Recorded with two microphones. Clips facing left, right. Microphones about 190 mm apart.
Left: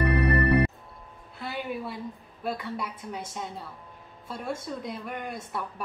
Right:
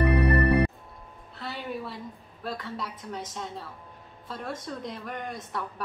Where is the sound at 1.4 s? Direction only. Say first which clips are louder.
Left 2 dB; 10° left (ahead or behind).